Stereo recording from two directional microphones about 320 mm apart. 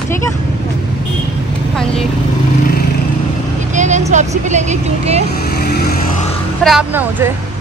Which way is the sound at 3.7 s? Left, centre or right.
Right.